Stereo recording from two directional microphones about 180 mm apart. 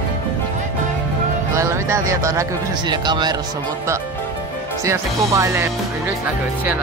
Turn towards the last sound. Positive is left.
turn(degrees=-15)  # may be behind; listen again after turning